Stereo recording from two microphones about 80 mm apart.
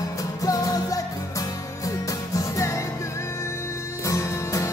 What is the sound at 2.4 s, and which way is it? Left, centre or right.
Music, left.